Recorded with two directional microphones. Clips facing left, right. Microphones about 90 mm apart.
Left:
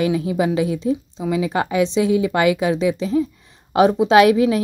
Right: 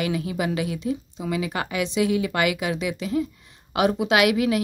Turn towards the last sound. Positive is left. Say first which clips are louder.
# left 7 dB
turn(degrees=30)  # may be behind; listen again after turning